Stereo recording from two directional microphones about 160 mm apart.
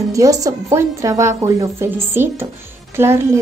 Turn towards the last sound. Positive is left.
turn(degrees=-15)  # may be behind; listen again after turning